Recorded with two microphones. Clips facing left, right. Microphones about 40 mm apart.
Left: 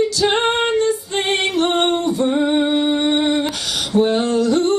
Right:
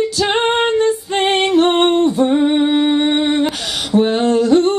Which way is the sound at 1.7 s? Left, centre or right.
Right.